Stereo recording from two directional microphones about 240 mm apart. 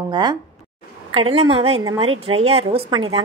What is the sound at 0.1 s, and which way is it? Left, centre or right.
A woman's voice, centre.